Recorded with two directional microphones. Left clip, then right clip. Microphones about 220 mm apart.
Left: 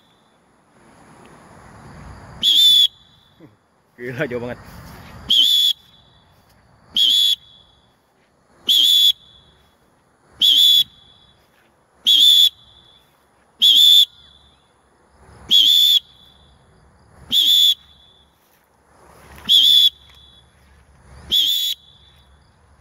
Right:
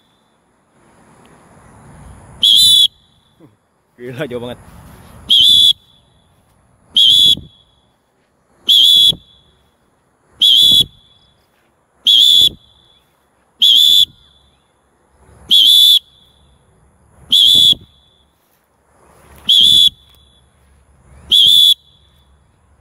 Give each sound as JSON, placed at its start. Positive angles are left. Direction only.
{"t": 2.3, "sound": "whistle", "side_deg": -10}
{"t": 3.4, "sound": "a sound", "side_deg": -10}
{"t": 3.9, "sound": "speech", "side_deg": -15}
{"t": 5.2, "sound": "whistle", "side_deg": -10}
{"t": 6.9, "sound": "a sound", "side_deg": -10}
{"t": 8.6, "sound": "whistle", "side_deg": -10}
{"t": 10.3, "sound": "whistle", "side_deg": -10}
{"t": 12.0, "sound": "whistle", "side_deg": -10}
{"t": 13.6, "sound": "whistle", "side_deg": -10}
{"t": 15.4, "sound": "whistle", "side_deg": -15}
{"t": 17.3, "sound": "a sound", "side_deg": -15}
{"t": 19.5, "sound": "whistle", "side_deg": -15}
{"t": 21.3, "sound": "whistle", "side_deg": -15}